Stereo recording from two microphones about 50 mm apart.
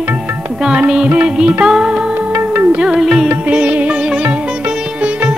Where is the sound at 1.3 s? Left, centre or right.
Centre.